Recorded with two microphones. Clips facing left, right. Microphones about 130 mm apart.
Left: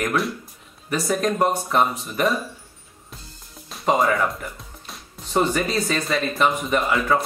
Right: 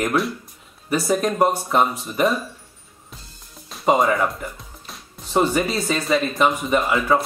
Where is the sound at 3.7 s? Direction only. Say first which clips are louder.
Right 3 dB; 5° right (ahead or behind).